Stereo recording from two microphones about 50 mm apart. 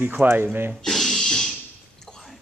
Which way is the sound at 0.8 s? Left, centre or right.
Centre.